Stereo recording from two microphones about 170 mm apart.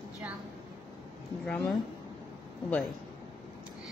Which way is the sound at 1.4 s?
5° left (ahead or behind).